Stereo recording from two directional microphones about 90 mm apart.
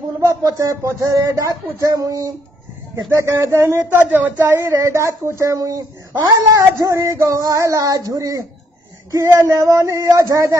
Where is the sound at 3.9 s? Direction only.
20° right (ahead or behind); by 5.8 s 40° right (ahead or behind).